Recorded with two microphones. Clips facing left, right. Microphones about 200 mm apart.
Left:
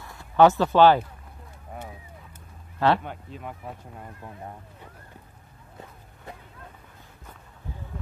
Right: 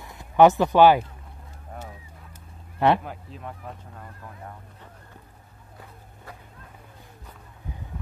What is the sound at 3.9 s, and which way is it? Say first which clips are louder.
Speech: left 2 dB; 20° left (ahead or behind).